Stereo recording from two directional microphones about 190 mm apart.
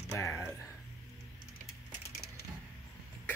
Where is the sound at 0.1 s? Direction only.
15° left (ahead or behind).